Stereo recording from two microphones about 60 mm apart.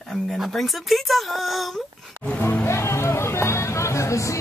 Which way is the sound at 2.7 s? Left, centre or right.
Left.